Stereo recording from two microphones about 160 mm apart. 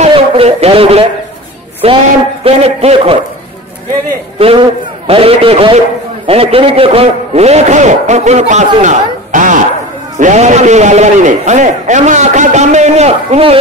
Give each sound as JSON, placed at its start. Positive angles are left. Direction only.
{"t": 0.1, "sound": "a man's voice", "side_deg": -40}
{"t": 4.4, "sound": "a man's voice", "side_deg": -35}